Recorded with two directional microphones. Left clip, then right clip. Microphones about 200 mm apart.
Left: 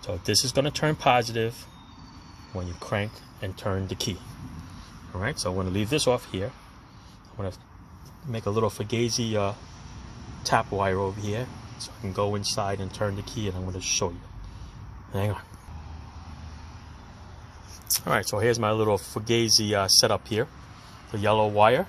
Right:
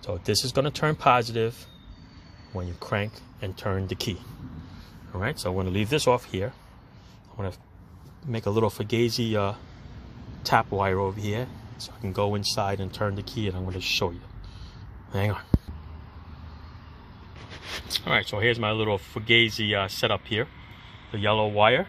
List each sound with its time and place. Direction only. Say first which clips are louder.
0.0 s speech: left 1 dB; 5° right (ahead or behind)
2.5 s speech: even; 5° right (ahead or behind)
8.3 s speech: right 1 dB; 15° right (ahead or behind)
15.1 s speech: right 1 dB; 5° right (ahead or behind)
18.0 s speech: even; 5° left (ahead or behind)